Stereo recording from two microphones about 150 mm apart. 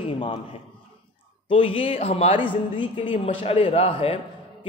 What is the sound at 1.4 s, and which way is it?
A man's voice, 35° left (ahead or behind).